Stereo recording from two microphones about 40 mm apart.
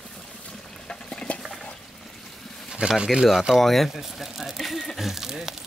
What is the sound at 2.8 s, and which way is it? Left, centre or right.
Speech, right.